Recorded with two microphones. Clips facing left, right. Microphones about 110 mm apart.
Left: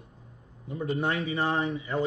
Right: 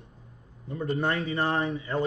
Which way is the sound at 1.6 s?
30° right (ahead or behind).